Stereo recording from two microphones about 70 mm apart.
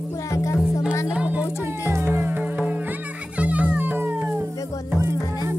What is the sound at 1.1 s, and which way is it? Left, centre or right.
Speech, right.